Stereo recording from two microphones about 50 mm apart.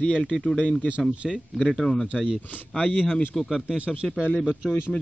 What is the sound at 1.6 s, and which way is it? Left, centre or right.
Speech, centre.